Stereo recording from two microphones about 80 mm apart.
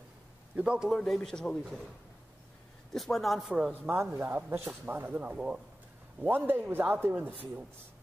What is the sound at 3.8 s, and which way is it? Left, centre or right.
Speech, right.